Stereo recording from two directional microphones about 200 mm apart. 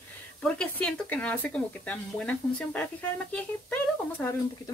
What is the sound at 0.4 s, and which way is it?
Speech, 5° left (ahead or behind).